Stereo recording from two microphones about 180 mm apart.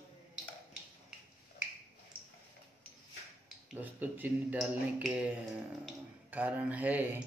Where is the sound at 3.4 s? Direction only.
10° right (ahead or behind).